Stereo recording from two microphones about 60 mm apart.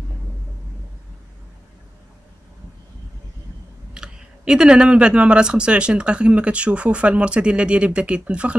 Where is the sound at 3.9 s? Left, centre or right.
Centre.